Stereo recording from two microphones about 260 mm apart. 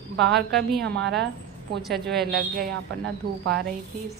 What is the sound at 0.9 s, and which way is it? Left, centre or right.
A woman's voice, centre.